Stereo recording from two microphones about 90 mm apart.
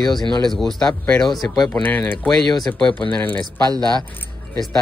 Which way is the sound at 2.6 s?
10° left (ahead or behind).